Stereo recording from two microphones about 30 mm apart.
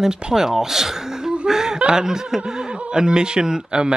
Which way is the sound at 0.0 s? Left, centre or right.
Right.